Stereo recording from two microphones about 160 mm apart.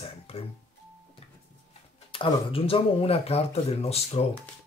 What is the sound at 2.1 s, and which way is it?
Speech, 35° left (ahead or behind).